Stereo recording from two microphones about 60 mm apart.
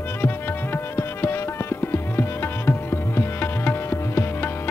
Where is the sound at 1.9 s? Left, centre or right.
Left.